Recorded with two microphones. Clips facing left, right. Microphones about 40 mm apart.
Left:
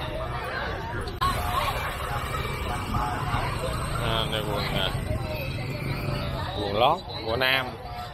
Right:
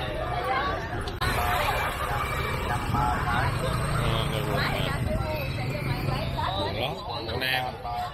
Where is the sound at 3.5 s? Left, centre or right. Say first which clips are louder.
Right 1 dB; centre.